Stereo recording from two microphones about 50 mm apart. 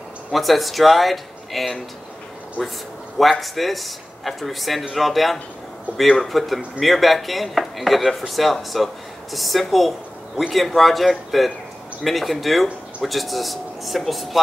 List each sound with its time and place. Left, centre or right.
0.3 s speech: centre
2.6 s a man's voice: centre
3.2 s speech: centre